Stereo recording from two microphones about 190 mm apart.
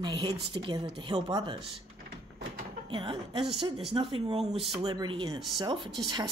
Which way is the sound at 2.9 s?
25° right (ahead or behind).